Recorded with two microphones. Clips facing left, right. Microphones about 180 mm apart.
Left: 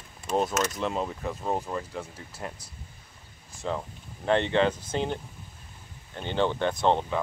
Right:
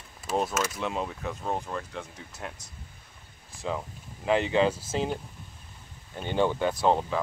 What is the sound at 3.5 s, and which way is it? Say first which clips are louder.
Speech: left 1 dB; centre (ahead or behind).